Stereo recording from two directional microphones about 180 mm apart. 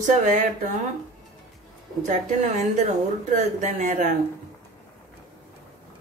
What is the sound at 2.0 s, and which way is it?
A woman's voice, 40° right (ahead or behind).